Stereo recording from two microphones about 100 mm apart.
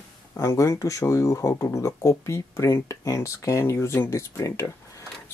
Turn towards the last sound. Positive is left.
turn(degrees=30)  # may be behind; listen again after turning